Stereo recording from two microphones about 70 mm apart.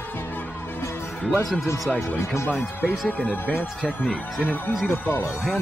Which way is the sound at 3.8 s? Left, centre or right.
Centre.